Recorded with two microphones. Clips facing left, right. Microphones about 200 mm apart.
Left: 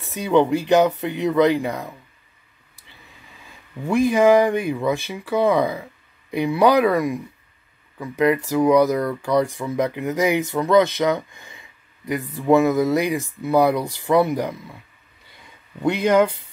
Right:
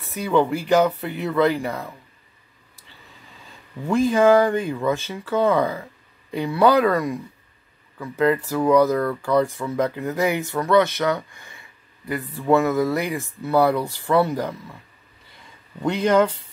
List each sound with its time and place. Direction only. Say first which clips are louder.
0.0 s speech: left 2 dB; 20° left (ahead or behind)
3.4 s speech: even; 10° left (ahead or behind)
15.8 s speech: left 1 dB; 10° left (ahead or behind)